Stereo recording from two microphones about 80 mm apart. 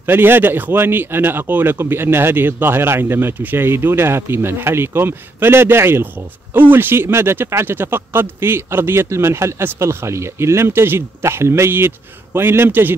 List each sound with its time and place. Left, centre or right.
0.0 s a man's voice: right